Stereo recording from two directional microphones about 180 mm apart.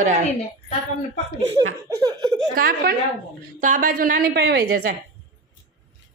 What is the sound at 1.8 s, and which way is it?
Laughter, 20° right (ahead or behind).